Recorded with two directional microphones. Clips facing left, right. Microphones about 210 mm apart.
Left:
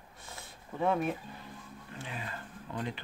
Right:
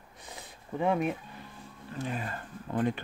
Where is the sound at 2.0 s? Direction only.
45° right (ahead or behind).